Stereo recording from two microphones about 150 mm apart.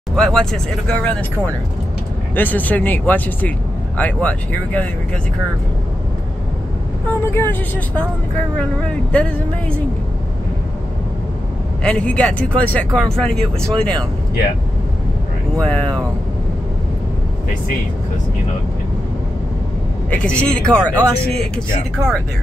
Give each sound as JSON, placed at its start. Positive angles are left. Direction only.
{"t": 0.1, "sound": "speech", "side_deg": 5}
{"t": 2.3, "sound": "speech", "side_deg": 10}
{"t": 7.2, "sound": "speech", "side_deg": 15}
{"t": 9.1, "sound": "speech", "side_deg": 5}
{"t": 11.8, "sound": "speech", "side_deg": 5}
{"t": 15.5, "sound": "speech", "side_deg": 5}
{"t": 20.1, "sound": "speech", "side_deg": 5}